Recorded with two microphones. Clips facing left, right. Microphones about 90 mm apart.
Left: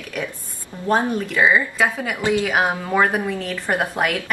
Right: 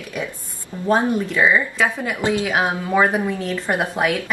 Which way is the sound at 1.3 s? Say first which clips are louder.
Left 3 dB; 5° left (ahead or behind).